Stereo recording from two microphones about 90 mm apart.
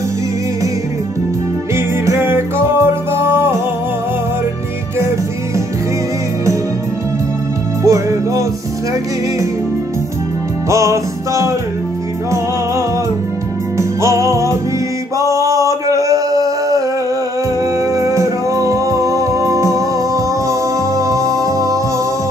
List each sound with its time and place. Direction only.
1.8 s music: 25° right (ahead or behind)
7.8 s music: 35° right (ahead or behind)
10.7 s music: 35° right (ahead or behind)
13.7 s music: 35° right (ahead or behind)
15.1 s male singing: 35° right (ahead or behind)
17.7 s music: 40° right (ahead or behind)